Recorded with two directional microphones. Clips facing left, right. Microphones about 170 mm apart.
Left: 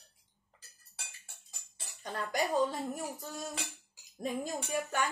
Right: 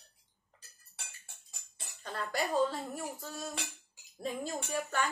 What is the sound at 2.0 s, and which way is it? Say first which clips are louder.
Dishes: left 2 dB; 15° left (ahead or behind).